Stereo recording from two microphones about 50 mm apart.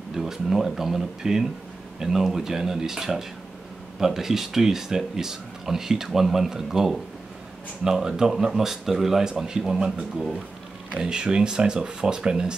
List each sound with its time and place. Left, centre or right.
0.1 s speech: centre